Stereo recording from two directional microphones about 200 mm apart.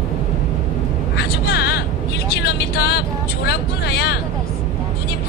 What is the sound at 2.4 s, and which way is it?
Vehicle, 55° left (ahead or behind).